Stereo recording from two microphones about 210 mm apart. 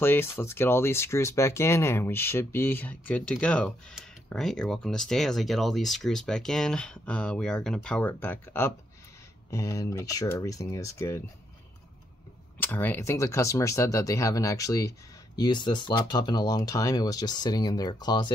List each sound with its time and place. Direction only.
0.0 s speech: 10° left (ahead or behind)
12.5 s speech: 10° left (ahead or behind)